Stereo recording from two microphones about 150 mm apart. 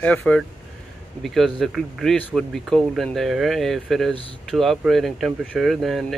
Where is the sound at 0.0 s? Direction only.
10° left (ahead or behind).